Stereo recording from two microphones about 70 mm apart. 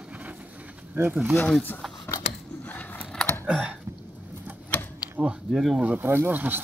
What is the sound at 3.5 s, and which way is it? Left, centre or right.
Typing, centre.